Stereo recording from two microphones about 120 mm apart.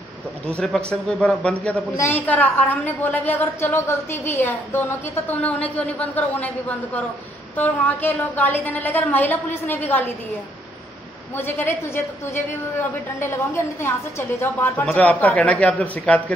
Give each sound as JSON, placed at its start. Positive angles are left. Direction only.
{"t": 0.5, "sound": "a woman's voice", "side_deg": 10}
{"t": 2.0, "sound": "a woman's voice", "side_deg": 20}
{"t": 11.3, "sound": "a woman's voice", "side_deg": 20}